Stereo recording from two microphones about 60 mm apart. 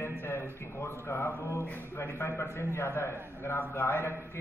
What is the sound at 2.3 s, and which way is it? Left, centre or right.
A man's voice, left.